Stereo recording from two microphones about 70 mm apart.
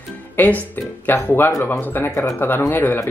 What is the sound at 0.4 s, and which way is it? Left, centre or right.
Speech, left.